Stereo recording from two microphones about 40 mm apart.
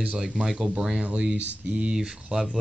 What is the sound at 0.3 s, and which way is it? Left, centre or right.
Speech, right.